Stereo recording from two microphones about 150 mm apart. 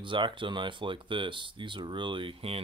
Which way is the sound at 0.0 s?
35° right (ahead or behind).